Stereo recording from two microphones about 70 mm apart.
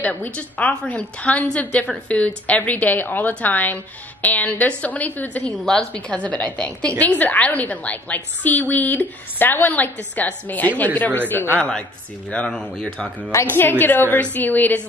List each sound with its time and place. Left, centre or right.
0.0 s a woman's voice: left
5.7 s a woman's voice: centre; by 11.5 s left
12.3 s speech: centre
13.5 s a woman's voice: left